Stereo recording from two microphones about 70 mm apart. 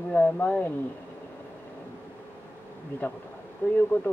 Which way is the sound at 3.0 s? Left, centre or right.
Left.